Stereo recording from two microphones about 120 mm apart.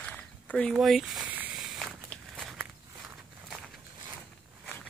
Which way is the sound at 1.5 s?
Centre (ahead or behind).